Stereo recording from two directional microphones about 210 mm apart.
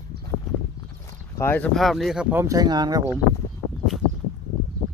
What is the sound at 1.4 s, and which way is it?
Speech, 10° left (ahead or behind).